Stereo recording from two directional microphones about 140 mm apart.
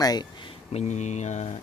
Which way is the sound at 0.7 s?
55° left (ahead or behind).